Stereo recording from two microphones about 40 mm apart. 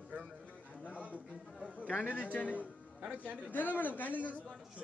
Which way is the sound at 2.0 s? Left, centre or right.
Left.